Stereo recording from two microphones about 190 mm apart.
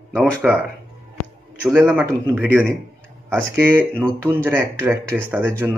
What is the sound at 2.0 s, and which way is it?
Speech, 10° right (ahead or behind).